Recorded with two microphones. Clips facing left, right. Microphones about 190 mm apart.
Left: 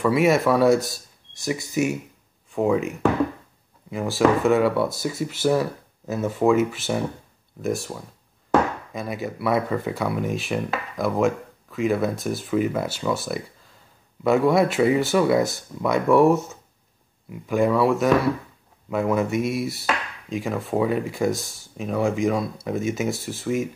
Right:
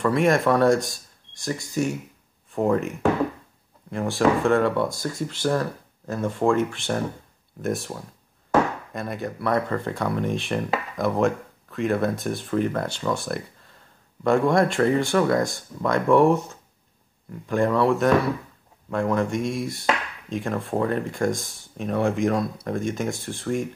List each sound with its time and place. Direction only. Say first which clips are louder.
0.0 s chop: left 1 dB; 5° left (ahead or behind)
3.9 s speech: left 1 dB; centre (ahead or behind)
7.6 s chop: left 1 dB; centre (ahead or behind)